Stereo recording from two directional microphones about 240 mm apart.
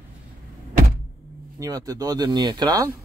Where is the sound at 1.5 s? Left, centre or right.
Centre.